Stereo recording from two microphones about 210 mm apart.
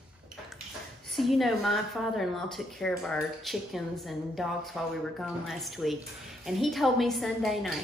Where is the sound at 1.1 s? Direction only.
Centre (ahead or behind).